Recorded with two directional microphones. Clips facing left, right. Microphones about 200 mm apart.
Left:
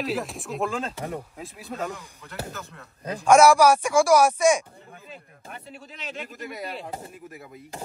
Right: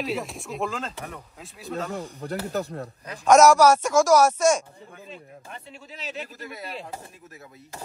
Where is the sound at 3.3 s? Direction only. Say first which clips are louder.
Right 1 dB; 10° left (ahead or behind).